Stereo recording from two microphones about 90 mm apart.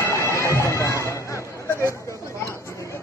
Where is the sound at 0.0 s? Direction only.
30° left (ahead or behind).